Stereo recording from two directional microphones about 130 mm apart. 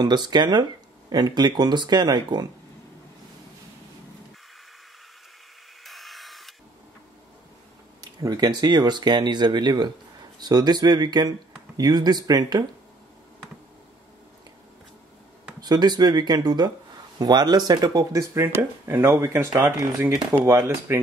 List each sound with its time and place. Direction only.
0.0 s speech: 35° right (ahead or behind)
5.9 s a sound: centre (ahead or behind)
8.0 s speech: 30° right (ahead or behind)
15.6 s speech: 30° right (ahead or behind)